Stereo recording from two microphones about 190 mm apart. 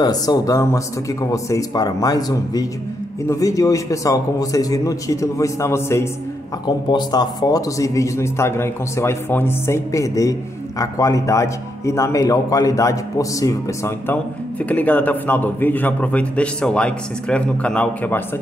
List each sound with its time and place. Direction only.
0.0 s a man's voice: 20° left (ahead or behind)